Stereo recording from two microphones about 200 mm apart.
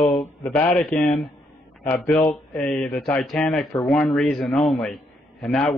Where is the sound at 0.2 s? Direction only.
5° left (ahead or behind).